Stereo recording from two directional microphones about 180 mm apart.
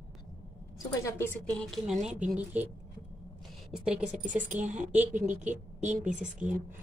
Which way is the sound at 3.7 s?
5° right (ahead or behind).